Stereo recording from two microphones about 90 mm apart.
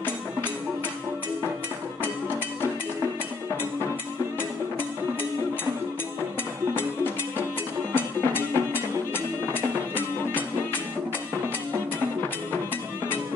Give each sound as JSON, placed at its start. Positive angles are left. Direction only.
{"t": 6.7, "sound": "music", "side_deg": 25}